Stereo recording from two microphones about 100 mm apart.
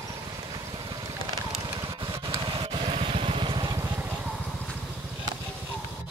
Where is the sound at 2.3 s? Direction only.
70° right (ahead or behind); by 3.8 s 55° right (ahead or behind).